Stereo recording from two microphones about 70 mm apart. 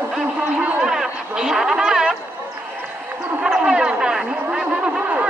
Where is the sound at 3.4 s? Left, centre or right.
Centre.